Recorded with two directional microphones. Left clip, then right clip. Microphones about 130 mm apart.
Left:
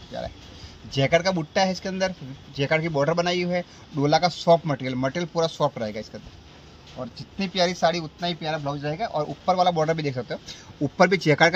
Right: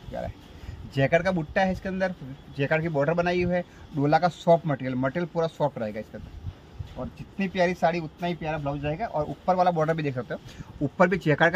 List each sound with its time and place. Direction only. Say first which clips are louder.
0.9 s a man's voice: left 2 dB; 20° left (ahead or behind)